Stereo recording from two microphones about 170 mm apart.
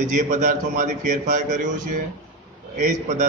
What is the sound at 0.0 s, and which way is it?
A man's voice, 45° right (ahead or behind).